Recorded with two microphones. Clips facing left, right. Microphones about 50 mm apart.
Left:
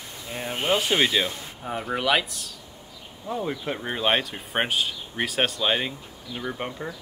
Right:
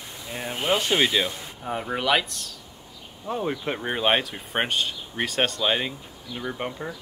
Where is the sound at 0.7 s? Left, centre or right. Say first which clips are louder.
Even; centre.